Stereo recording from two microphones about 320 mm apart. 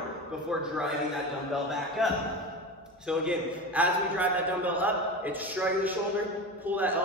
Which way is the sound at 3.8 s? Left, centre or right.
Centre.